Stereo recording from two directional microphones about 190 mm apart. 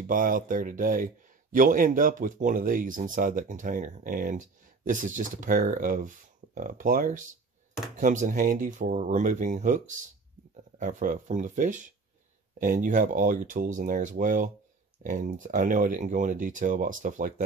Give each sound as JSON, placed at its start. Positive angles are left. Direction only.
{"t": 0.0, "sound": "speech", "side_deg": -45}